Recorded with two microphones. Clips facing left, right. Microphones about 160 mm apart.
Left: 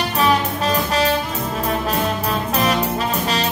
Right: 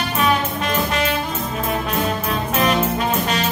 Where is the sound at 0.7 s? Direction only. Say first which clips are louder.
Left 3 dB; 35° left (ahead or behind).